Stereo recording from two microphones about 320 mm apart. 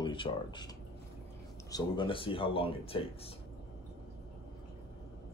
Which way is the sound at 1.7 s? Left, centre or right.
Centre.